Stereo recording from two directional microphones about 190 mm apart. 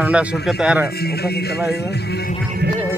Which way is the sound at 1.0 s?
55° left (ahead or behind).